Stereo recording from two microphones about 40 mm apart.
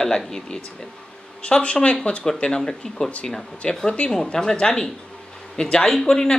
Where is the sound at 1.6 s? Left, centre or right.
Left.